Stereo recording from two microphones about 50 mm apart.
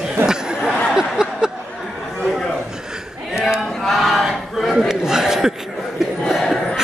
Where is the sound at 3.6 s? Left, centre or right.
Centre.